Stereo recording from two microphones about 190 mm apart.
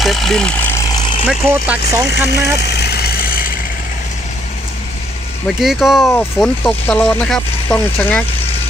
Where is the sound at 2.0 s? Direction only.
60° left (ahead or behind).